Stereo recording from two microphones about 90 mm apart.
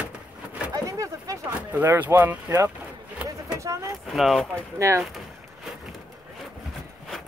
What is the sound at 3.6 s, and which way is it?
Speech, 35° right (ahead or behind).